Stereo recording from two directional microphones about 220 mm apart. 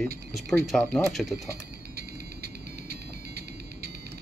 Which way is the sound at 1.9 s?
45° right (ahead or behind).